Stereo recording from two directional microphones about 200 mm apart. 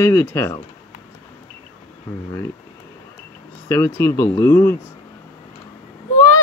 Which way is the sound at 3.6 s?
15° left (ahead or behind).